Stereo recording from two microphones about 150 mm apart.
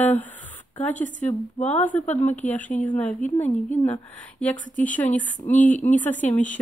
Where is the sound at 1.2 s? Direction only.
50° left (ahead or behind).